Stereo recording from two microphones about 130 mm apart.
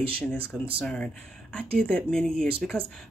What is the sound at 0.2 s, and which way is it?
A woman's voice, 10° left (ahead or behind).